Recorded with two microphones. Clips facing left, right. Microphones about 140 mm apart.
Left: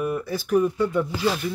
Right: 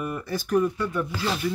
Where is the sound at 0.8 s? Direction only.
20° left (ahead or behind).